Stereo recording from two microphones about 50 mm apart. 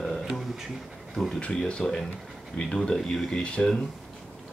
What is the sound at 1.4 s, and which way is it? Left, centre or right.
Speech, centre.